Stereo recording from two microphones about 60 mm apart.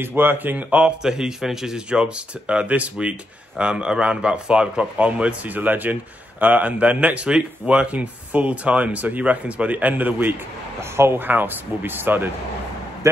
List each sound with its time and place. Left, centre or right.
0.0 s speech: right
1.0 s speech: centre; by 10.3 s right
10.8 s speech: right
11.2 s speech: right
13.0 s a man's voice: right